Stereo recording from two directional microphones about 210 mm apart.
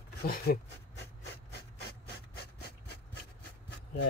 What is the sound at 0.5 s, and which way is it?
Speech, 50° left (ahead or behind).